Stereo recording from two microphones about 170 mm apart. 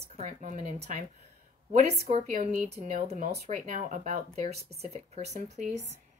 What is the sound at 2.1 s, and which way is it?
A woman's voice, 45° right (ahead or behind).